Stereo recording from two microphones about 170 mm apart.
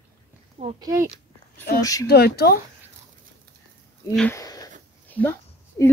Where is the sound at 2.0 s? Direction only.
70° left (ahead or behind).